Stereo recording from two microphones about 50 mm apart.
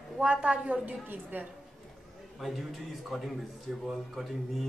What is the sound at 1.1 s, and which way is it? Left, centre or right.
Speech, right.